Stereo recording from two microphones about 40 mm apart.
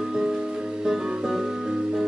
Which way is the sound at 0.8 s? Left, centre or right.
Centre.